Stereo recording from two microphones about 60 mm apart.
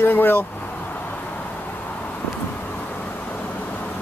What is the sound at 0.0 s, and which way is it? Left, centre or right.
Speech, left.